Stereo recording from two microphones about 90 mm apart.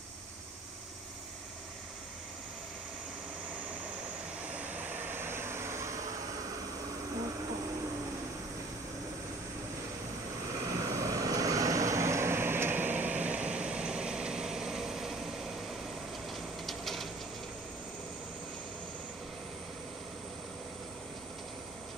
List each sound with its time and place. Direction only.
4.6 s vehicle: 15° right (ahead or behind); by 6.1 s 35° right (ahead or behind)
10.5 s vehicle: 35° right (ahead or behind); by 15.6 s 5° right (ahead or behind)
16.3 s a sound: centre (ahead or behind)